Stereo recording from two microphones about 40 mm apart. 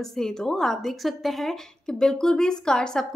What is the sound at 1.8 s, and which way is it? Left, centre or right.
Speech, centre.